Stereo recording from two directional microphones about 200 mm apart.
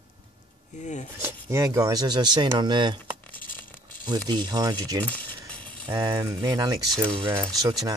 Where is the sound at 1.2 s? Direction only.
15° right (ahead or behind).